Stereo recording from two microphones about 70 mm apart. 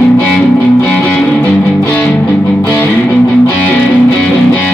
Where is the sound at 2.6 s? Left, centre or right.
Left.